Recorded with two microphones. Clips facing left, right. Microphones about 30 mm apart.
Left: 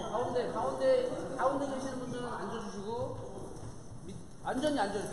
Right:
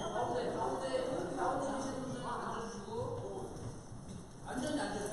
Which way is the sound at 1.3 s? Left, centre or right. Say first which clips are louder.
Left 6 dB; centre.